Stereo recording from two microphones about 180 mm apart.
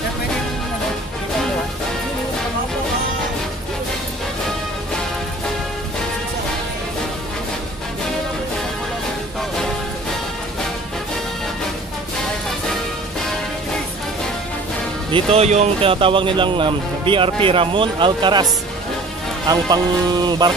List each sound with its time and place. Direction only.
15.0 s speech: 30° right (ahead or behind)